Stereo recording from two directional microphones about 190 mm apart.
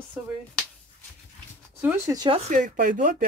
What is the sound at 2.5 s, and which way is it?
Speech, 45° right (ahead or behind).